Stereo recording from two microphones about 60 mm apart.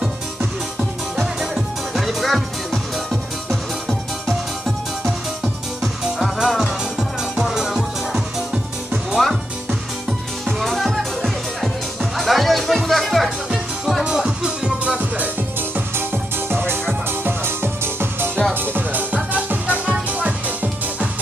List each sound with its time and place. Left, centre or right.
0.0 s music: centre
14.0 s music: centre
15.7 s music: right